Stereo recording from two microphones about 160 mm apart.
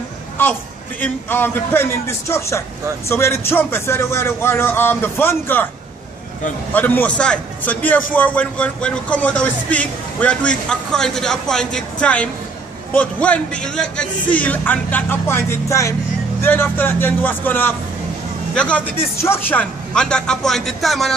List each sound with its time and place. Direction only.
0.4 s a man's voice: 10° left (ahead or behind)
6.7 s a man's voice: 10° left (ahead or behind)